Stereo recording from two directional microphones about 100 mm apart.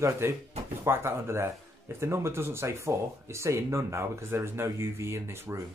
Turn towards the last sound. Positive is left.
turn(degrees=-25)  # may be behind; listen again after turning